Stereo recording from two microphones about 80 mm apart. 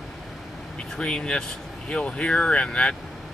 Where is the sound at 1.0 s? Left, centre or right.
Centre.